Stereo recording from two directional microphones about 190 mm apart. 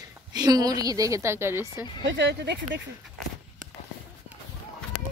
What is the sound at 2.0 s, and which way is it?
Speech, 70° right (ahead or behind).